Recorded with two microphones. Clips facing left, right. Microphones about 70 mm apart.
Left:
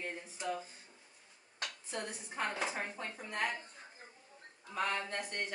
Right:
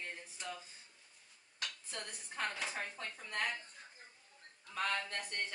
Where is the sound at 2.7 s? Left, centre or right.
Left.